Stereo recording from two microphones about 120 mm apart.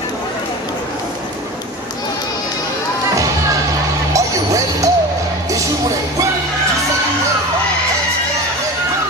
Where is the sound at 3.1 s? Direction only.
30° right (ahead or behind).